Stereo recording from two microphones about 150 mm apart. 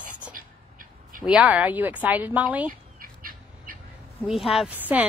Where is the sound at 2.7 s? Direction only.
70° right (ahead or behind).